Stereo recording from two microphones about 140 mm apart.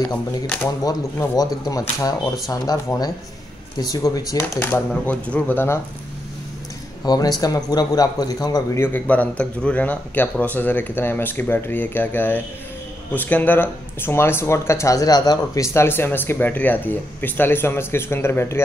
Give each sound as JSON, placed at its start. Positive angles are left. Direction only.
{"t": 0.8, "sound": "a man's voice", "side_deg": 25}
{"t": 4.6, "sound": "speech", "side_deg": 15}
{"t": 7.1, "sound": "a man's voice", "side_deg": 25}
{"t": 8.8, "sound": "speech", "side_deg": 10}